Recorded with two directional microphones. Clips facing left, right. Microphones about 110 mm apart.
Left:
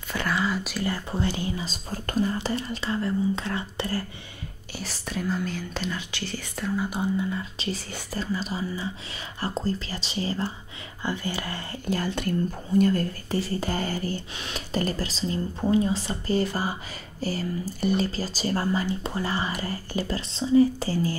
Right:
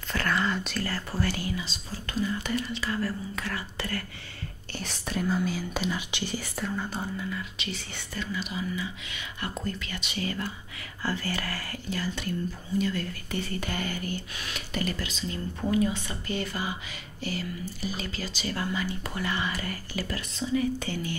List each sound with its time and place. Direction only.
0.1 s speech: 10° left (ahead or behind)
0.8 s speech: 20° left (ahead or behind)
1.6 s speech: 45° left (ahead or behind)
2.3 s speech: 30° left (ahead or behind)
4.7 s speech: centre (ahead or behind); by 6.4 s 15° right (ahead or behind)
6.8 s speech: 15° left (ahead or behind)
7.2 s speech: 30° left (ahead or behind)
11.8 s speech: 50° left (ahead or behind)